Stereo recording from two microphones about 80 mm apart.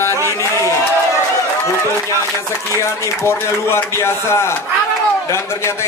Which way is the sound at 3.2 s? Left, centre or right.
Left.